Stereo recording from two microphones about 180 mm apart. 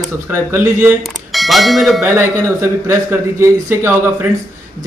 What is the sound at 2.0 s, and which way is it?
A man's voice, 10° right (ahead or behind).